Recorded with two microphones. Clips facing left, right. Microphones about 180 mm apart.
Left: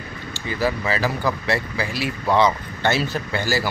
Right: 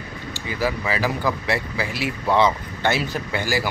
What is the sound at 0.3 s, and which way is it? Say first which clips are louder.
Speech: left 1 dB; 10° right (ahead or behind).